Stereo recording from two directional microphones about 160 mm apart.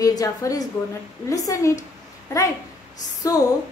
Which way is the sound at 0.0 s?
20° left (ahead or behind).